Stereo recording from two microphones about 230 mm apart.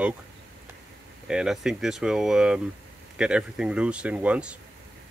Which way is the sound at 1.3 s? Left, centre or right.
Centre.